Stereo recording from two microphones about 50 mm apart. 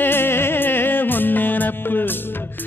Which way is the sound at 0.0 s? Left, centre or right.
Left.